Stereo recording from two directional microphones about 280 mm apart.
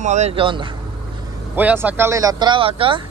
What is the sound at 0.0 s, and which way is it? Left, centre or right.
Speech, right.